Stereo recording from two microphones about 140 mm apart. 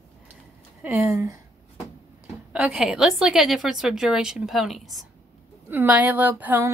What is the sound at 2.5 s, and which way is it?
A woman's voice, 5° right (ahead or behind).